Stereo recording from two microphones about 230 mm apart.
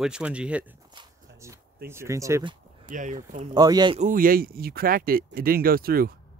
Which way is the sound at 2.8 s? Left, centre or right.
Right.